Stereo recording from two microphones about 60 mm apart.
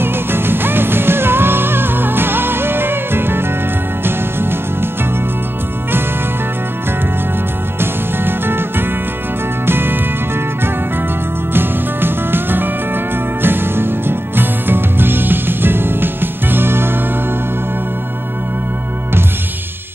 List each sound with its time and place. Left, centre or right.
0.0 s music: right
7.8 s music: right
11.5 s music: right